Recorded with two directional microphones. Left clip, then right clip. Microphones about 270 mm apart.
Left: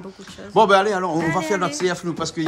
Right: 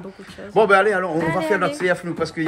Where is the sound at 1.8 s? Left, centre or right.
Centre.